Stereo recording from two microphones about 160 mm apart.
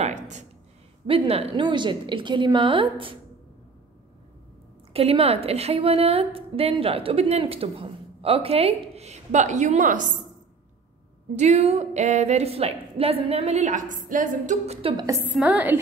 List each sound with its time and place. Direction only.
0.0 s a sound: 45° right (ahead or behind)
1.0 s a woman's voice: 35° right (ahead or behind)
4.9 s a woman's voice: 35° right (ahead or behind); by 10.0 s 55° right (ahead or behind)
11.3 s a woman's voice: 45° right (ahead or behind)
14.8 s a woman's voice: 35° right (ahead or behind)
15.0 s a woman's voice: 20° right (ahead or behind)